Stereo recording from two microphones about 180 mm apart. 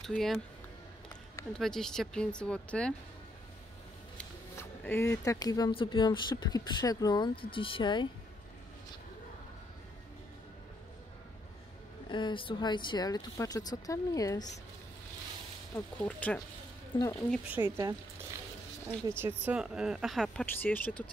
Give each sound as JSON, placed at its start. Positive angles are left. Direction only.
{"t": 0.0, "sound": "speech", "side_deg": 0}
{"t": 1.5, "sound": "speech", "side_deg": 5}
{"t": 4.2, "sound": "speech", "side_deg": 10}
{"t": 12.1, "sound": "speech", "side_deg": 25}
{"t": 16.0, "sound": "speech", "side_deg": 10}
{"t": 16.9, "sound": "speech", "side_deg": 25}
{"t": 17.6, "sound": "speech", "side_deg": -20}
{"t": 18.9, "sound": "a woman's voice", "side_deg": -15}